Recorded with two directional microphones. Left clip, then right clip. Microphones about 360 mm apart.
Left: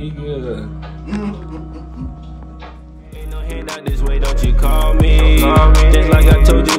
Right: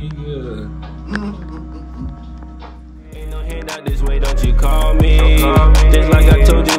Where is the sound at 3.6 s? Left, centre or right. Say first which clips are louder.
Even; centre.